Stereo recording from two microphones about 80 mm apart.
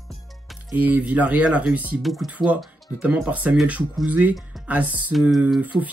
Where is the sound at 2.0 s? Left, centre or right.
Centre.